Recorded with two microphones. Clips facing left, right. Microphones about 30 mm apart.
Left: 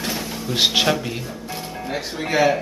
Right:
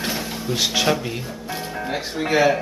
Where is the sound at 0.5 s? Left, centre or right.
Left.